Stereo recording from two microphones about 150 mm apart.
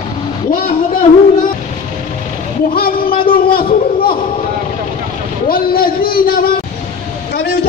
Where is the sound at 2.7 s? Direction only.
75° left (ahead or behind).